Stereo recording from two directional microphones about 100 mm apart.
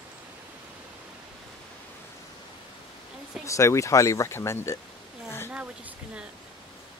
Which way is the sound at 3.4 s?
30° left (ahead or behind).